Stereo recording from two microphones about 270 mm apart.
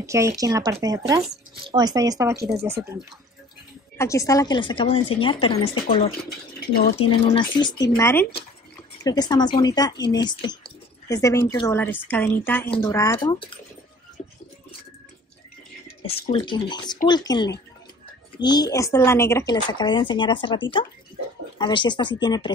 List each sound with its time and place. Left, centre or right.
0.0 s speech: centre
4.0 s speech: centre
16.1 s speech: centre